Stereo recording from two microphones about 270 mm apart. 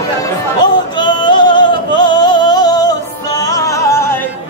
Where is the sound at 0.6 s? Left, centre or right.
Centre.